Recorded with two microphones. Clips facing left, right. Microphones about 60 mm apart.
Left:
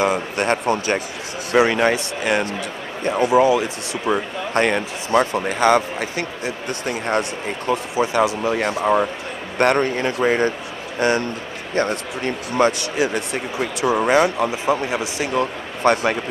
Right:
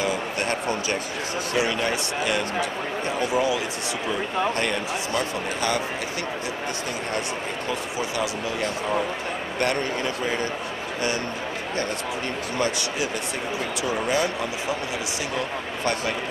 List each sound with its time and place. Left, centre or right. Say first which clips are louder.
0.0 s a sound: left 6 dB; left
1.5 s a man's voice: left 9 dB; left
4.1 s a man's voice: left 4 dB; left
8.0 s a man's voice: left 10 dB; left
12.5 s speech: left 8 dB; left
13.8 s speech: left 9 dB; left
14.7 s speech: left 7 dB; left
15.9 s a man's voice: left 9 dB; left